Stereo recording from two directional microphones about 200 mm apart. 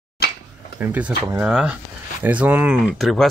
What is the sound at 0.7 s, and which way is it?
Speech, 10° right (ahead or behind).